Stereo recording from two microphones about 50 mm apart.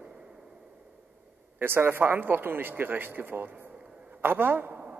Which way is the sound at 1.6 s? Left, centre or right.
Right.